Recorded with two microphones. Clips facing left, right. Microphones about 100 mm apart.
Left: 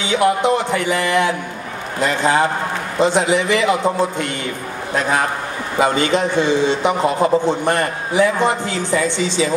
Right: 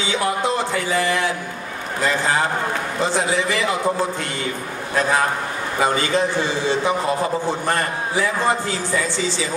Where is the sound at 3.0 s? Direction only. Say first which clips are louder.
Left 6 dB; 20° left (ahead or behind).